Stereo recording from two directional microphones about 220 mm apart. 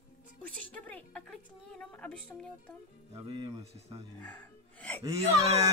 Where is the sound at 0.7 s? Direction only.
5° left (ahead or behind).